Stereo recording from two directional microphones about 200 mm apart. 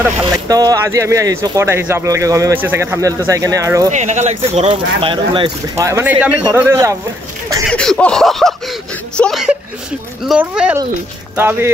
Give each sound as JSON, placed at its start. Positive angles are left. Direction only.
{"t": 0.2, "sound": "speech", "side_deg": -20}
{"t": 3.9, "sound": "speech", "side_deg": -35}
{"t": 7.7, "sound": "a sound", "side_deg": 5}
{"t": 9.1, "sound": "speech", "side_deg": 0}
{"t": 10.2, "sound": "a sound", "side_deg": -5}
{"t": 11.3, "sound": "speech", "side_deg": -10}